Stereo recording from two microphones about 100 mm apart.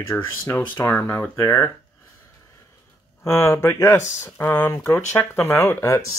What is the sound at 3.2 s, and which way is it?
Speech, 30° left (ahead or behind).